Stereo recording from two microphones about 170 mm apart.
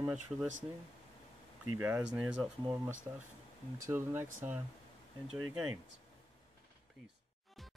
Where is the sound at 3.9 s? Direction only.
15° right (ahead or behind).